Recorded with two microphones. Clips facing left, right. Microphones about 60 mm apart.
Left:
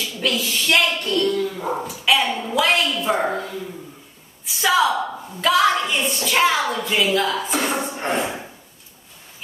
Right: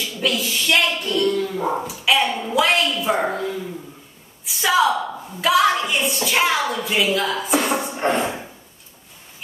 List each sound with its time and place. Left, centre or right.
0.2 s a woman's voice: centre
1.4 s speech: right
1.7 s a woman's voice: centre
4.5 s a woman's voice: centre